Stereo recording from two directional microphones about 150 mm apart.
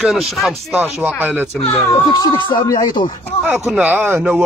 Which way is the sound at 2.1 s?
30° left (ahead or behind).